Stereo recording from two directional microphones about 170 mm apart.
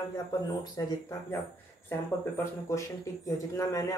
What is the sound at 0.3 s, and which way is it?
Speech, 20° left (ahead or behind).